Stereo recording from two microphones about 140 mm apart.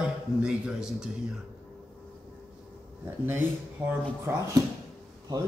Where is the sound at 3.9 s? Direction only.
20° right (ahead or behind).